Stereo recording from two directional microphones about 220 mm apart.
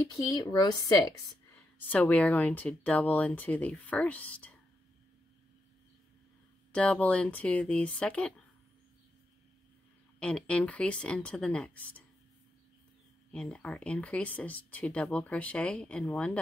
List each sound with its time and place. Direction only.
0.0 s speech: 15° left (ahead or behind)
1.5 s speech: 10° left (ahead or behind)
6.7 s speech: 5° left (ahead or behind)
10.1 s speech: 5° left (ahead or behind)
13.3 s speech: 5° left (ahead or behind)